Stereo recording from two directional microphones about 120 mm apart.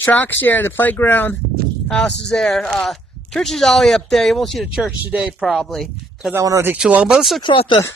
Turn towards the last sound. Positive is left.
turn(degrees=45)  # may be behind; listen again after turning